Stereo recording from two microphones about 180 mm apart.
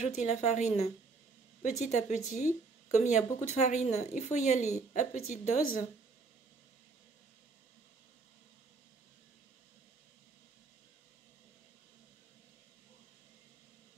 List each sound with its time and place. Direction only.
0.0 s a woman's voice: 40° left (ahead or behind)